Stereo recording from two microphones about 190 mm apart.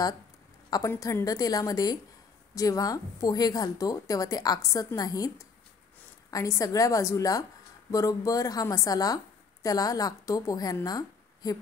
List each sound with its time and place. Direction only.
0.7 s a woman's voice: 20° left (ahead or behind)